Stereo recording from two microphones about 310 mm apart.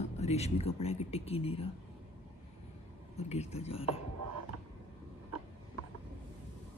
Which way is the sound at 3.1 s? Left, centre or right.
Left.